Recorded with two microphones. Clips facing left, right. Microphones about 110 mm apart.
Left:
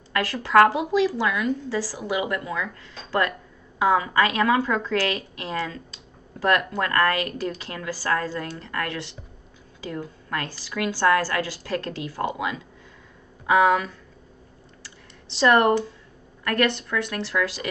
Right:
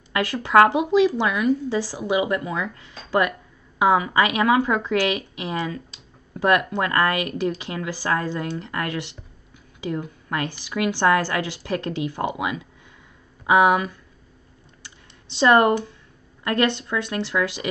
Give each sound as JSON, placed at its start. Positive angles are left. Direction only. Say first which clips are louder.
{"t": 0.1, "sound": "a woman's voice", "louder": "right 1 dB", "side_deg": -20}
{"t": 14.8, "sound": "computer keyboard", "louder": "even", "side_deg": -20}
{"t": 16.4, "sound": "a woman's voice", "louder": "right 1 dB", "side_deg": -20}